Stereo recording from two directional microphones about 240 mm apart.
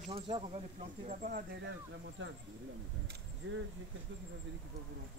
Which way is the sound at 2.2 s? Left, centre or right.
Right.